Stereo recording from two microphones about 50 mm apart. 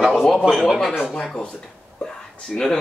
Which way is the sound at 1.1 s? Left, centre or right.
Centre.